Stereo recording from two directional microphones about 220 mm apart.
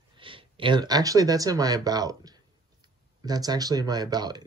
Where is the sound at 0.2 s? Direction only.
25° right (ahead or behind).